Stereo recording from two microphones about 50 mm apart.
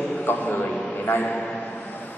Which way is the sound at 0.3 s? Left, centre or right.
Left.